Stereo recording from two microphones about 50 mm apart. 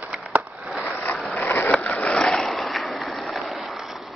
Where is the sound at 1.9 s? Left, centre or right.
Left.